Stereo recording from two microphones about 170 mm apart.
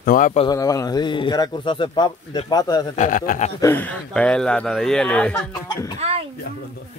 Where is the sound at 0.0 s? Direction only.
55° left (ahead or behind).